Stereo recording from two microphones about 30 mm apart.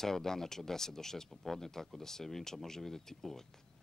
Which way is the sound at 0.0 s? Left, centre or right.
Centre.